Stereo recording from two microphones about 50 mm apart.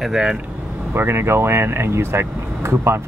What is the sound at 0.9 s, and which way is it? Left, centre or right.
Speech, right.